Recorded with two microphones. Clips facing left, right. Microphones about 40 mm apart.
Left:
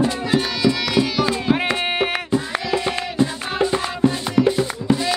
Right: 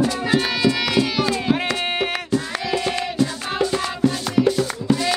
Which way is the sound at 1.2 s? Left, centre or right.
Centre.